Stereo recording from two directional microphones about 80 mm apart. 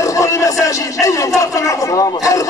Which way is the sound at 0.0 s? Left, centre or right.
Left.